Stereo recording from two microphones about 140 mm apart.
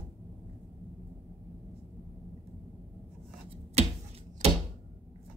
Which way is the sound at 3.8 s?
50° right (ahead or behind).